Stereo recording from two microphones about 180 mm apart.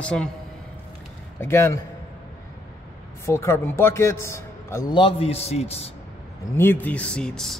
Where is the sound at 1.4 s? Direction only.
15° left (ahead or behind).